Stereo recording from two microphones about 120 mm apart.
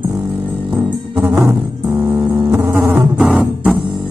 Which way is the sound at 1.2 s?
20° right (ahead or behind).